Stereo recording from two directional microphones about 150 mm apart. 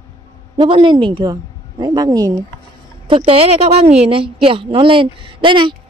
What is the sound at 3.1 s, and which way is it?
A woman's voice, 40° right (ahead or behind).